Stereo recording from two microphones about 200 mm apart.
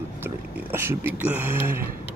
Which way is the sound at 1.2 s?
10° right (ahead or behind).